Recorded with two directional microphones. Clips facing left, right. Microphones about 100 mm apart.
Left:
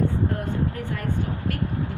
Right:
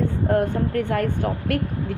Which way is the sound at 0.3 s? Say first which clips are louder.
Right 7 dB; 60° right (ahead or behind).